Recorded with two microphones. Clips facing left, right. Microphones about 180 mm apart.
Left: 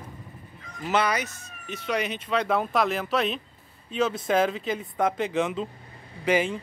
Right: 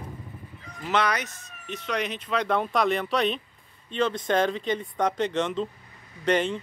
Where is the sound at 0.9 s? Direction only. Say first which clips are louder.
Left 1 dB; 5° left (ahead or behind).